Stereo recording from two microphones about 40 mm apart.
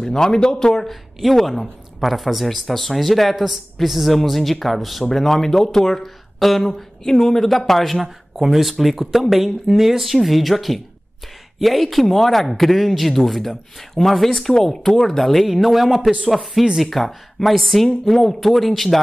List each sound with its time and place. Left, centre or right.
0.0 s speech: centre
7.1 s speech: centre